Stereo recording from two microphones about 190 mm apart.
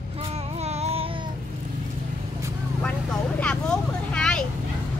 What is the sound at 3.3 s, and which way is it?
Vehicle, 5° left (ahead or behind).